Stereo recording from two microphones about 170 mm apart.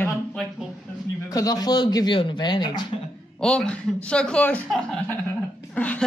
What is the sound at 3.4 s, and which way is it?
A woman's voice, 5° left (ahead or behind).